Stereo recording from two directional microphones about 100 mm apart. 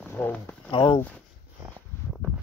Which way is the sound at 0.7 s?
60° left (ahead or behind).